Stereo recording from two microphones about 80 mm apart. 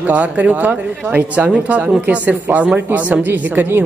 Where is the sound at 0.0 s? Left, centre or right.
Centre.